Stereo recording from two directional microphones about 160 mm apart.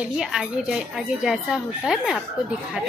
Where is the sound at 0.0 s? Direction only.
5° right (ahead or behind).